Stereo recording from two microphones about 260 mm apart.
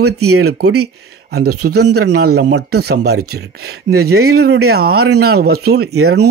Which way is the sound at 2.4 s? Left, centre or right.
Right.